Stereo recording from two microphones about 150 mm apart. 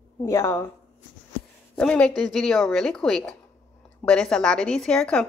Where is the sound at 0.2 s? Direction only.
20° left (ahead or behind).